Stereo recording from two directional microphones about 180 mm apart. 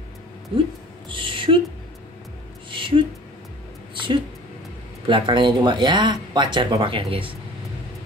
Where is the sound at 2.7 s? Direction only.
25° right (ahead or behind).